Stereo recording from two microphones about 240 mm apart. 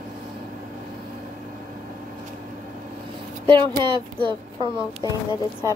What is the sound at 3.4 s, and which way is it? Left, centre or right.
Speech, centre.